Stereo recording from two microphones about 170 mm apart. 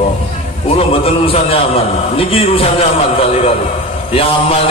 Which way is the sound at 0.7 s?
35° left (ahead or behind).